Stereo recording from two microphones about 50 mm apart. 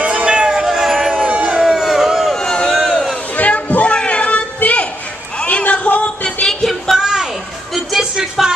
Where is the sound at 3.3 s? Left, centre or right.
Left.